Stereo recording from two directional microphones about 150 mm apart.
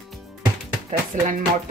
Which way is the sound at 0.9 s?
60° right (ahead or behind).